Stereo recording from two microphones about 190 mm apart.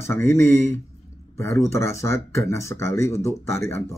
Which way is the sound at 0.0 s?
15° left (ahead or behind).